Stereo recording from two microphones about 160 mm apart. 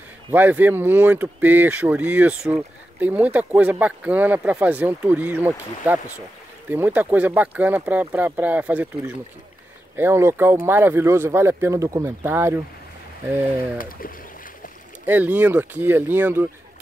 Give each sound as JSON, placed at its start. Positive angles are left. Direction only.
{"t": 0.3, "sound": "speech", "side_deg": -10}
{"t": 13.7, "sound": "speech", "side_deg": 60}
{"t": 15.0, "sound": "speech", "side_deg": -10}